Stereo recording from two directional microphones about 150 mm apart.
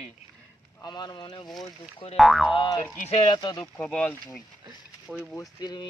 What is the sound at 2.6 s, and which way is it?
Speech, 35° left (ahead or behind).